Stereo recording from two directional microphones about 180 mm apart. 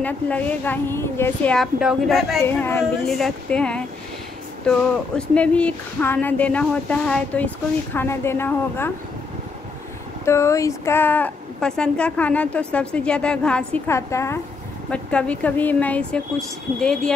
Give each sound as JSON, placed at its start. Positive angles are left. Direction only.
{"t": 0.0, "sound": "speech", "side_deg": 10}
{"t": 2.4, "sound": "speech", "side_deg": 10}
{"t": 3.1, "sound": "speech", "side_deg": 0}
{"t": 10.2, "sound": "speech", "side_deg": 15}
{"t": 13.9, "sound": "speech", "side_deg": 15}